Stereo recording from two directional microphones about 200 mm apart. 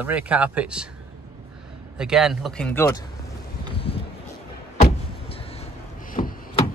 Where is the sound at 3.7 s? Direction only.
30° left (ahead or behind).